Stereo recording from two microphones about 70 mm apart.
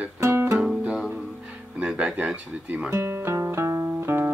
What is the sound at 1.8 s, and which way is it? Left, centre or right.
Speech, centre.